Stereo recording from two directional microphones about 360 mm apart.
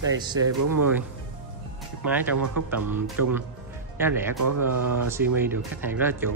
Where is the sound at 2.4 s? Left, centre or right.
Right.